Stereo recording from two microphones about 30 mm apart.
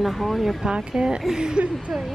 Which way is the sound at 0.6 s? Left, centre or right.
Right.